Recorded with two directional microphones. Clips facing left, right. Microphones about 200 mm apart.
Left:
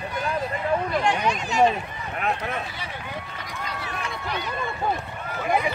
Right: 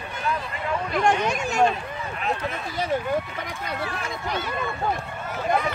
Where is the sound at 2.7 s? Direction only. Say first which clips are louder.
Right 11 dB; 45° right (ahead or behind).